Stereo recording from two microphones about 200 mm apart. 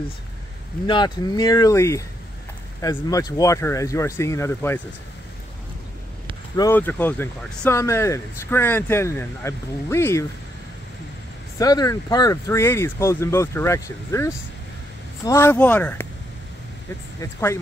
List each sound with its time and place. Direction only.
0.8 s speech: 20° left (ahead or behind)
6.5 s speech: 15° left (ahead or behind)
11.5 s speech: 20° left (ahead or behind)
17.2 s speech: 15° left (ahead or behind)